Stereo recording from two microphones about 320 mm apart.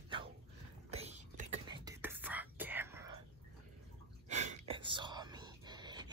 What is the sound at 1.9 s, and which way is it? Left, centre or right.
Whispering, centre.